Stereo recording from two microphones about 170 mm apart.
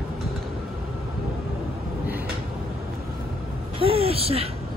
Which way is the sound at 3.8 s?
35° right (ahead or behind).